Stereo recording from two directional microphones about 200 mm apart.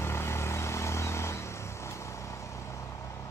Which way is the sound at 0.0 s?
15° left (ahead or behind).